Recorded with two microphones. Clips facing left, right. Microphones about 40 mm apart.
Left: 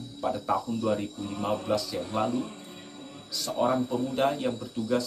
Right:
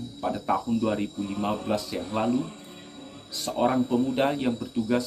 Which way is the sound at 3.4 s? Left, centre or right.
Right.